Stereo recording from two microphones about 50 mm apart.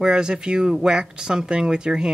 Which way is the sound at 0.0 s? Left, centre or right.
Centre.